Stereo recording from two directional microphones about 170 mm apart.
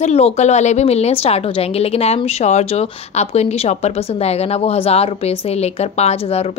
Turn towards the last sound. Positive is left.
turn(degrees=40)  # may be behind; listen again after turning